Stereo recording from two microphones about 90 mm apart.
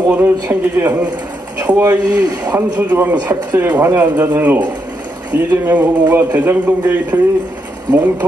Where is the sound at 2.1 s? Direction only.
45° right (ahead or behind).